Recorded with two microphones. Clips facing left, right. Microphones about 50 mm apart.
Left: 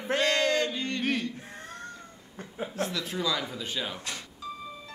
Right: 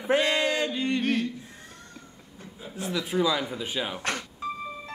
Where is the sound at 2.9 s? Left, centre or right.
Centre.